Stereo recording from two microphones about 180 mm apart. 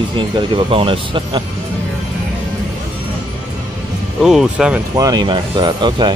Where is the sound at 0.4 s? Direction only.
30° right (ahead or behind).